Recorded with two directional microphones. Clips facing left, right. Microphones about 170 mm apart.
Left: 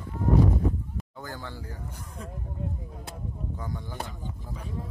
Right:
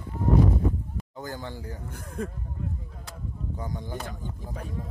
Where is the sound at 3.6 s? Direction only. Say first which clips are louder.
Right 5 dB; 20° right (ahead or behind).